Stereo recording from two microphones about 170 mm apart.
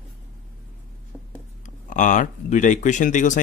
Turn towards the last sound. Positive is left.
turn(degrees=45)  # may be behind; listen again after turning